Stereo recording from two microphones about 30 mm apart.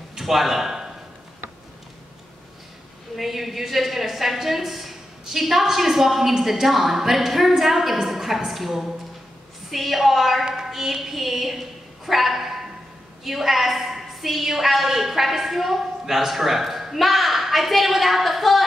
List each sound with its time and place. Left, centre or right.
0.2 s speech: centre
3.2 s a woman's voice: centre
10.4 s a sound: right
10.7 s a woman's voice: centre